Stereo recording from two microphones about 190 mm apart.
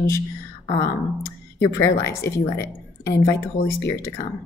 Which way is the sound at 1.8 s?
15° left (ahead or behind).